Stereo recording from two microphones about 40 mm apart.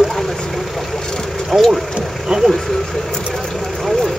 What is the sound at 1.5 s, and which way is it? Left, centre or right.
Speech, centre.